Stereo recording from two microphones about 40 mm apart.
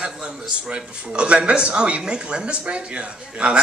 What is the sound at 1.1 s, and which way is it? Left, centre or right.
Speech, right.